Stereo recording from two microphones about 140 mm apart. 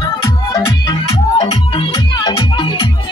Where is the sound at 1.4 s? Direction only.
40° left (ahead or behind).